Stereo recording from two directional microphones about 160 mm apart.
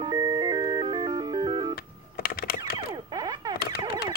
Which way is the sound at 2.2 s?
65° left (ahead or behind).